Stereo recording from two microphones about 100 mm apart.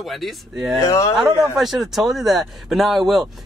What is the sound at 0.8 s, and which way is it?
Speech, 30° left (ahead or behind).